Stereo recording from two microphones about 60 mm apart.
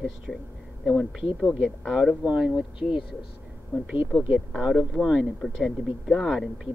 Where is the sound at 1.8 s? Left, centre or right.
Centre.